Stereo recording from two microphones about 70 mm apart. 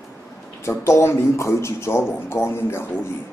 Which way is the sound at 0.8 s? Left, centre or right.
Left.